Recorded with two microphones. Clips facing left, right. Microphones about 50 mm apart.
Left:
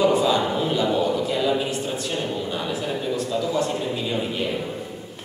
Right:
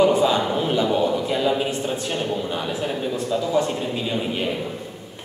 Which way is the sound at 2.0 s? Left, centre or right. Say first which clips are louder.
Right 1 dB; right.